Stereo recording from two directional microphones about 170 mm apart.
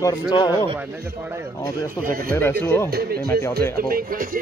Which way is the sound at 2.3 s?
15° left (ahead or behind).